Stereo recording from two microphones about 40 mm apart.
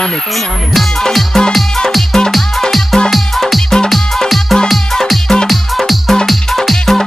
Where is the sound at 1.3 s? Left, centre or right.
Centre.